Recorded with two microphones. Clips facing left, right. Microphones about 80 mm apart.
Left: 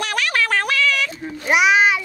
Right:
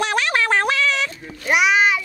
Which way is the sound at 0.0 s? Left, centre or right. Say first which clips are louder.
Right 2 dB; right.